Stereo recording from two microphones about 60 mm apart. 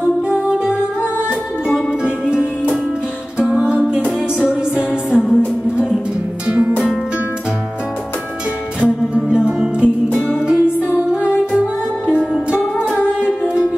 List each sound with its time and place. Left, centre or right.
2.0 s music: centre
6.4 s music: right
8.8 s music: centre